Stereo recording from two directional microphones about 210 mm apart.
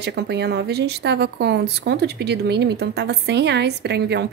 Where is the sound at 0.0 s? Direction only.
55° right (ahead or behind).